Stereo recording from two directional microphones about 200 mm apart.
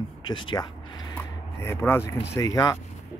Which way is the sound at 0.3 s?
20° left (ahead or behind).